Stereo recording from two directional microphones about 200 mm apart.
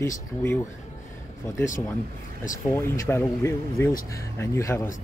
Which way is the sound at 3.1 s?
15° left (ahead or behind).